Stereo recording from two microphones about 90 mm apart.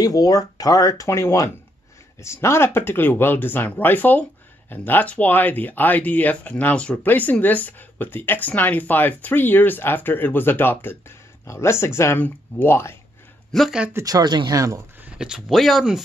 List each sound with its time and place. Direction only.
0.0 s speech: 40° left (ahead or behind)
13.5 s speech: centre (ahead or behind)
14.0 s speech: 50° right (ahead or behind)
15.0 s speech: 10° right (ahead or behind)